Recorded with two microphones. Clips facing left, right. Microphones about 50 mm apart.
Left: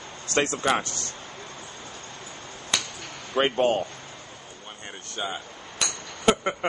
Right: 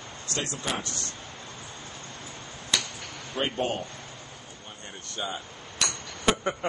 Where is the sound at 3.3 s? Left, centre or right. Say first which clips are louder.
Left 7 dB; left.